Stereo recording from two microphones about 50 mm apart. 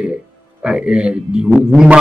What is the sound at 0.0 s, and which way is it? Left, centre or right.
A man's voice, right.